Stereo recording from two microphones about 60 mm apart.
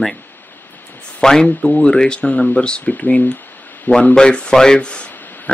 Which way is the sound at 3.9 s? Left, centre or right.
Left.